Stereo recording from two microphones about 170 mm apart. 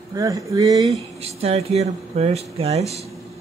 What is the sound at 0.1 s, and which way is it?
Speech, 20° right (ahead or behind).